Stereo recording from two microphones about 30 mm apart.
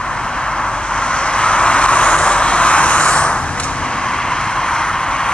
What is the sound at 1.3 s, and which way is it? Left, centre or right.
Vehicle, left.